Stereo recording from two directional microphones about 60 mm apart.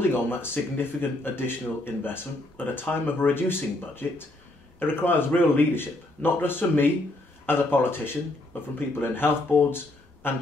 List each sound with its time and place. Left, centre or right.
0.1 s speech: left